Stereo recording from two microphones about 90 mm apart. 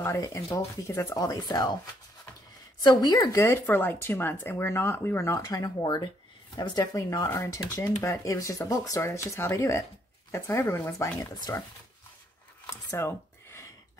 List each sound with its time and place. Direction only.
0.0 s speech: 35° left (ahead or behind)
2.8 s speech: 50° left (ahead or behind)
3.3 s speech: 30° left (ahead or behind)
10.9 s speech: 45° left (ahead or behind)
12.6 s a sound: 30° left (ahead or behind)